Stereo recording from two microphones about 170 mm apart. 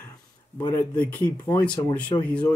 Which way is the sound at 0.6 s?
25° left (ahead or behind).